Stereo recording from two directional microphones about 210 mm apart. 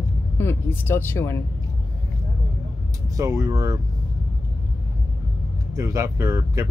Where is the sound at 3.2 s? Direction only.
15° right (ahead or behind).